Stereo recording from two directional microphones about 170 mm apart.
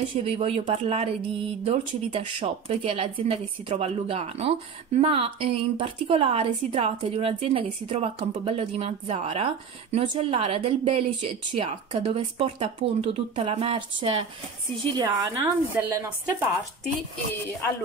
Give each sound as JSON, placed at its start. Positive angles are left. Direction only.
{"t": 0.1, "sound": "speech", "side_deg": -35}
{"t": 15.0, "sound": "a woman's voice", "side_deg": -25}